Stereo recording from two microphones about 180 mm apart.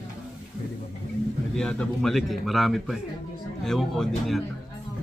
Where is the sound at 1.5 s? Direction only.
5° left (ahead or behind).